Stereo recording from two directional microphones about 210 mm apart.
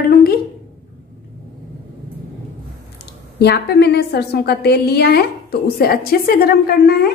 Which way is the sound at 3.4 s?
50° left (ahead or behind).